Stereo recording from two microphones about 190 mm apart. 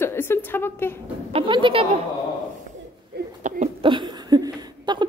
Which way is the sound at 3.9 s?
25° right (ahead or behind).